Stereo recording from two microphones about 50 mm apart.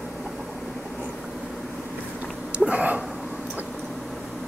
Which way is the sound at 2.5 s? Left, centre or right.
Right.